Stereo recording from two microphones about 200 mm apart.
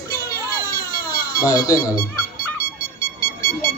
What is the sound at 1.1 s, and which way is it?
Speech, 15° left (ahead or behind).